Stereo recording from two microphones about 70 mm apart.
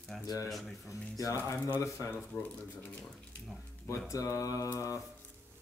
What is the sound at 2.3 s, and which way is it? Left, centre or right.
Speech, left.